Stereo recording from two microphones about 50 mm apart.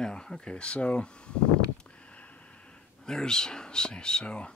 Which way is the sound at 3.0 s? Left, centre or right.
Centre.